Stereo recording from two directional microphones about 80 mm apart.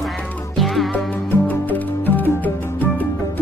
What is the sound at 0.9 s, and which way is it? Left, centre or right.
Music, left.